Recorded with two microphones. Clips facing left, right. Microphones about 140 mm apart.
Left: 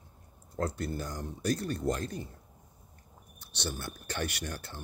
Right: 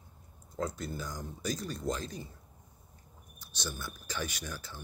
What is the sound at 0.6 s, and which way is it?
Speech, 65° left (ahead or behind).